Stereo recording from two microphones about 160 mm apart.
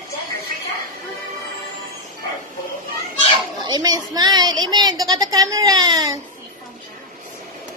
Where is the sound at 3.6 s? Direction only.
25° right (ahead or behind).